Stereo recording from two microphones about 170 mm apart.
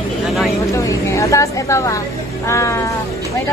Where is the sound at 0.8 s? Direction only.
20° left (ahead or behind).